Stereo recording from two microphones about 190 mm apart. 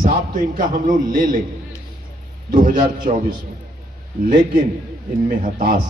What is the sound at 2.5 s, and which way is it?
Speech, 45° right (ahead or behind).